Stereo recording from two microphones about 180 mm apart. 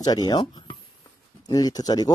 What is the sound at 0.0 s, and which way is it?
Speech, 20° left (ahead or behind).